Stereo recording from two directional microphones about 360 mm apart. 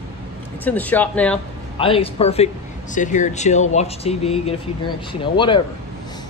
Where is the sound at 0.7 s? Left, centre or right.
Centre.